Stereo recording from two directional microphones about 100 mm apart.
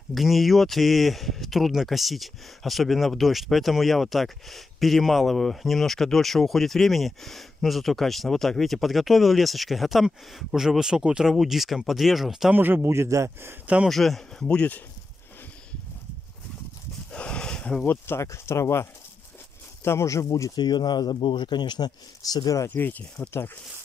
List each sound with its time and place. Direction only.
0.1 s speech: centre (ahead or behind)
12.5 s a man's voice: 20° right (ahead or behind)
13.8 s speech: centre (ahead or behind)
17.1 s a sound: 10° left (ahead or behind)
18.0 s speech: 25° left (ahead or behind)
20.5 s speech: 45° left (ahead or behind)
22.7 s speech: 15° left (ahead or behind)